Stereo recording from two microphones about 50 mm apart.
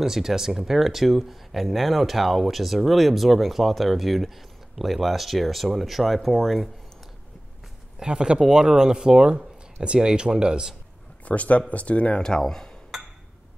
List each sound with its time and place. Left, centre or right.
0.0 s speech: centre
8.0 s speech: centre
11.2 s speech: left
12.2 s speech: centre